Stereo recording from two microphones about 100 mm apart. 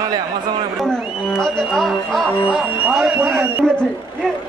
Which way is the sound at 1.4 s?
5° left (ahead or behind).